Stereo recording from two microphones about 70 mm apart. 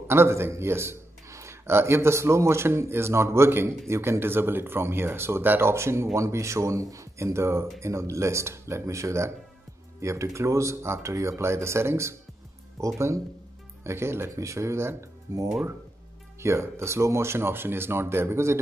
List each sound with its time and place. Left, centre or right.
0.1 s a man's voice: right
15.3 s speech: right
16.3 s a man's voice: right